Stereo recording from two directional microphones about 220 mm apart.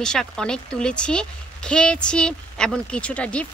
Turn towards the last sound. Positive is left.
turn(degrees=5)  # may be behind; listen again after turning